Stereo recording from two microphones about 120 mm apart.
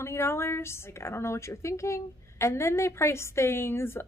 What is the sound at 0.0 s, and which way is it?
Speech, 20° left (ahead or behind).